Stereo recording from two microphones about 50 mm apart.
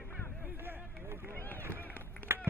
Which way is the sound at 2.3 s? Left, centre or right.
Right.